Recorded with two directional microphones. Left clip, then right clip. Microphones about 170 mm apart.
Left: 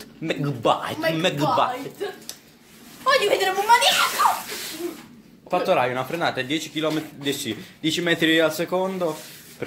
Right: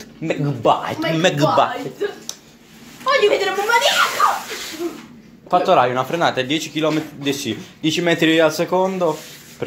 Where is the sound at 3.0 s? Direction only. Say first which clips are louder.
Right 4 dB; 75° left (ahead or behind).